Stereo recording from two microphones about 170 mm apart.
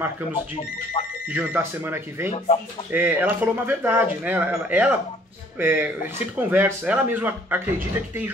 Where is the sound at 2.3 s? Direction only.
35° left (ahead or behind).